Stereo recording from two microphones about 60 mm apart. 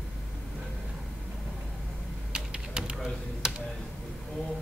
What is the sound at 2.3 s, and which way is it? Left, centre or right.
Typing, centre.